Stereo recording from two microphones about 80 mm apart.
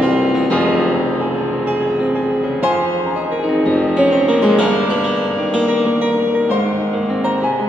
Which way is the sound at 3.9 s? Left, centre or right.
Centre.